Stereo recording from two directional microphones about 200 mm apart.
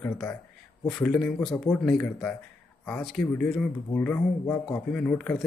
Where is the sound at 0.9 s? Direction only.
5° left (ahead or behind).